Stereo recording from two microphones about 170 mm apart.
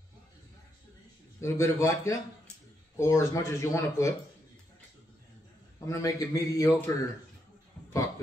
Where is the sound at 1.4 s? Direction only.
15° left (ahead or behind).